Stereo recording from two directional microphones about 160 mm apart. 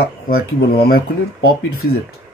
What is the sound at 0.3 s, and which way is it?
Speech, 75° left (ahead or behind).